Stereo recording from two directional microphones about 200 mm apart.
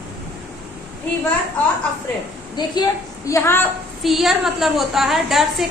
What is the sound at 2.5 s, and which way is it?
A woman's voice, 20° left (ahead or behind).